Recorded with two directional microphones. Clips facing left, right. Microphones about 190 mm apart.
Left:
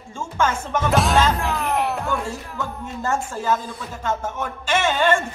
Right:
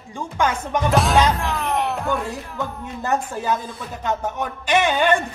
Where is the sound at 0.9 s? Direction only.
Centre (ahead or behind).